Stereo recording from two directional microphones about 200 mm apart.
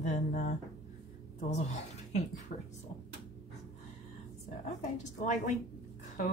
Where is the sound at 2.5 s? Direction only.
45° left (ahead or behind).